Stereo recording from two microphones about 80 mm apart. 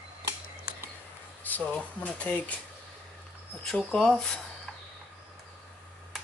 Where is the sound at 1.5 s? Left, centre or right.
Left.